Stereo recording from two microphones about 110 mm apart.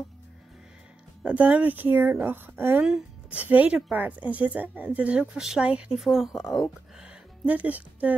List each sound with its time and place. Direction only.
1.2 s speech: 10° right (ahead or behind)
7.0 s speech: 10° right (ahead or behind)